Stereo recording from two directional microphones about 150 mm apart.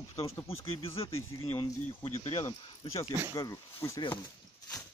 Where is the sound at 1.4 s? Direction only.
40° left (ahead or behind).